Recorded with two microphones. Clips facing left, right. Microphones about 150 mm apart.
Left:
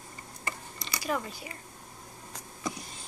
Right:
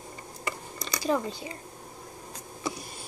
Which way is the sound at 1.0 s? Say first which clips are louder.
Right 5 dB; 25° right (ahead or behind).